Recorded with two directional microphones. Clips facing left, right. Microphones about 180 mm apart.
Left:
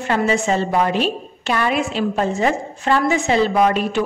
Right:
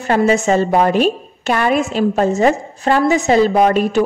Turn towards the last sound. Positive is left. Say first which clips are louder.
# right 4 dB
turn(degrees=-40)  # may be behind; listen again after turning